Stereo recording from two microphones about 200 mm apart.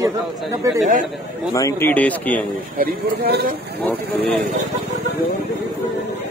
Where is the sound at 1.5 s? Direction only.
15° left (ahead or behind).